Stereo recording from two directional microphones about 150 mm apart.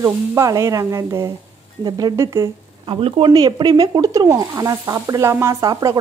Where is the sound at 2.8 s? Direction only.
40° right (ahead or behind).